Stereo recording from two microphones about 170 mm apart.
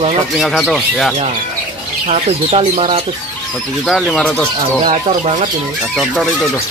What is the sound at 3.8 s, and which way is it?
Speech, centre (ahead or behind).